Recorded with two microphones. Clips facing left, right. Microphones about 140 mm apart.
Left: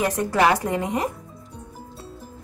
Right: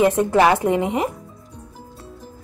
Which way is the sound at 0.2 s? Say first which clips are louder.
Right 4 dB; 25° right (ahead or behind).